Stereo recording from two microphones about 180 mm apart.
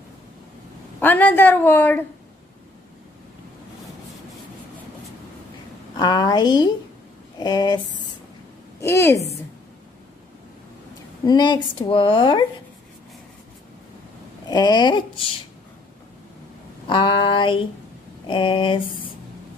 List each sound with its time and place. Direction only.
0.9 s a woman's voice: 10° left (ahead or behind)
5.9 s a woman's voice: 20° left (ahead or behind)
8.8 s a woman's voice: 15° left (ahead or behind)
11.2 s a woman's voice: 25° left (ahead or behind)
14.5 s a woman's voice: 25° left (ahead or behind)
16.8 s a woman's voice: 30° left (ahead or behind)